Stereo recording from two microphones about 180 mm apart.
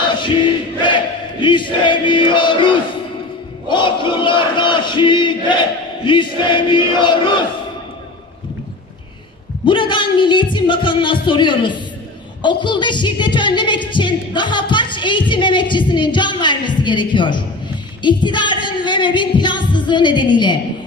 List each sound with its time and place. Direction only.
0.7 s music: 25° left (ahead or behind)
3.6 s a woman's voice: 25° left (ahead or behind)
9.7 s a woman's voice: 25° left (ahead or behind)